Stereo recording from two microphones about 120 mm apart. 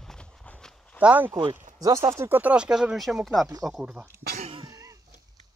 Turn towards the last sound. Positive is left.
turn(degrees=-10)  # may be behind; listen again after turning